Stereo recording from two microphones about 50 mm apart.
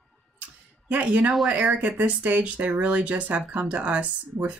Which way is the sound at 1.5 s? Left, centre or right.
Right.